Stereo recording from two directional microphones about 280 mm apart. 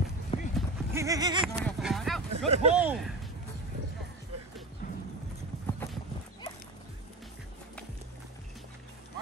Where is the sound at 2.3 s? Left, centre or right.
Right.